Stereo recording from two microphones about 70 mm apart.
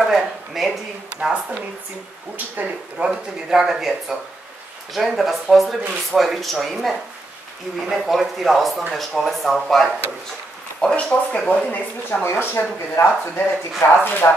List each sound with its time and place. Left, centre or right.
0.0 s speech: centre
2.3 s speech: right; by 9.8 s centre
10.8 s speech: centre
12.3 s speech: left